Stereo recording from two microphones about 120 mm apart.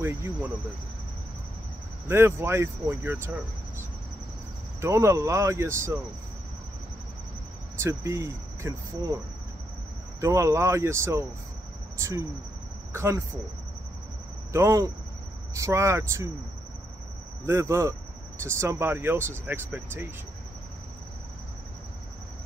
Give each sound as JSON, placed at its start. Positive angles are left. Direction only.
{"t": 0.0, "sound": "speech", "side_deg": -20}
{"t": 2.0, "sound": "speech", "side_deg": -20}
{"t": 4.8, "sound": "speech", "side_deg": -25}
{"t": 7.8, "sound": "speech", "side_deg": -25}
{"t": 10.2, "sound": "speech", "side_deg": -25}
{"t": 12.9, "sound": "speech", "side_deg": -20}
{"t": 14.5, "sound": "speech", "side_deg": -25}
{"t": 17.5, "sound": "speech", "side_deg": -20}